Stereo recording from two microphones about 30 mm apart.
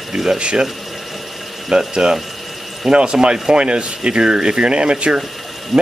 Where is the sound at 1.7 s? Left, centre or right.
Right.